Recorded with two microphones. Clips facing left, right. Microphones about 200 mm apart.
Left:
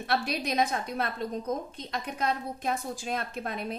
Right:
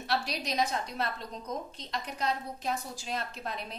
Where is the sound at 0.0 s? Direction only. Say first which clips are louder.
Left 3 dB; 55° left (ahead or behind).